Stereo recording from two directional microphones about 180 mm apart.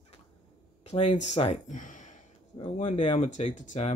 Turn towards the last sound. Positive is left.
turn(degrees=40)  # may be behind; listen again after turning